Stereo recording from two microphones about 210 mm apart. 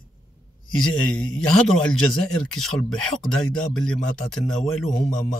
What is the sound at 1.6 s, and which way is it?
Speech, 5° left (ahead or behind).